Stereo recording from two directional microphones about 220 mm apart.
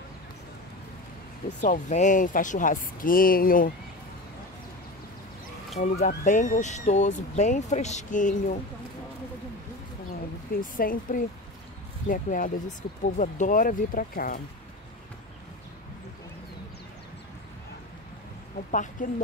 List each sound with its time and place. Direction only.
1.6 s speech: 35° left (ahead or behind)
5.8 s speech: 40° left (ahead or behind)
10.6 s speech: 40° left (ahead or behind)
18.7 s speech: 35° left (ahead or behind)